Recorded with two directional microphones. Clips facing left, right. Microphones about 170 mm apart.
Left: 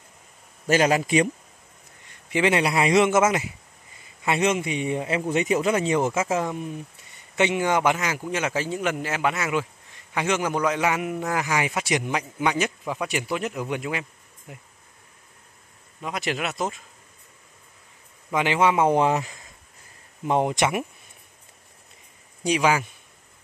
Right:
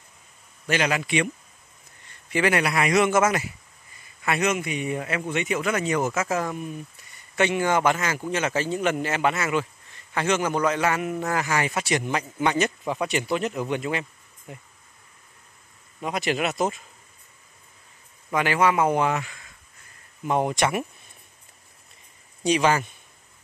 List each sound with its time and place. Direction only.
0.7 s a man's voice: 40° left (ahead or behind)
2.3 s a man's voice: 25° left (ahead or behind); by 14.0 s 5° left (ahead or behind)
16.0 s speech: centre (ahead or behind)
18.3 s a man's voice: 20° left (ahead or behind)
20.2 s a man's voice: 20° left (ahead or behind)
22.4 s a man's voice: 10° left (ahead or behind)